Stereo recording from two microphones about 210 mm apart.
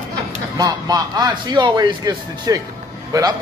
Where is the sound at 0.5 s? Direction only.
15° right (ahead or behind).